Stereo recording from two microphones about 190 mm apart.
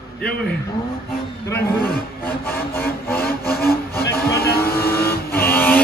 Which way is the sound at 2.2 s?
10° left (ahead or behind).